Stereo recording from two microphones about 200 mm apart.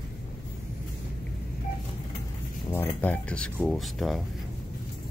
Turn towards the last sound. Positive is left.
turn(degrees=0)  # may be behind; listen again after turning